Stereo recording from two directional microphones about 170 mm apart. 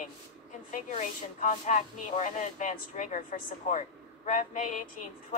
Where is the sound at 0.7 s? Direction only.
45° left (ahead or behind).